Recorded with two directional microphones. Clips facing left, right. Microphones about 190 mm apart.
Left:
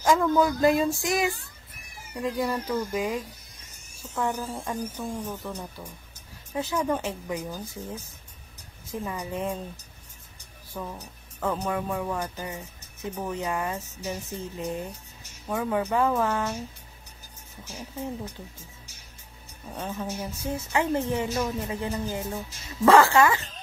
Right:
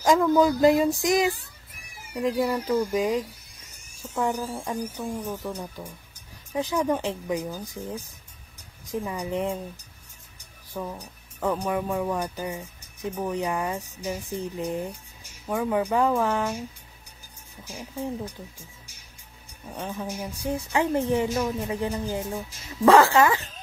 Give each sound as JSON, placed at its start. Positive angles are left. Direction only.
{"t": 0.0, "sound": "speech", "side_deg": -15}
{"t": 3.7, "sound": "dental drill", "side_deg": -10}
{"t": 4.8, "sound": "speech", "side_deg": -10}
{"t": 10.7, "sound": "music", "side_deg": -10}
{"t": 11.4, "sound": "speech", "side_deg": -15}
{"t": 17.6, "sound": "speech", "side_deg": -10}
{"t": 19.7, "sound": "speech", "side_deg": -10}